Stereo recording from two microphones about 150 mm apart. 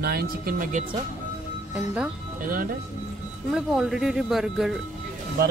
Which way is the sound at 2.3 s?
65° right (ahead or behind).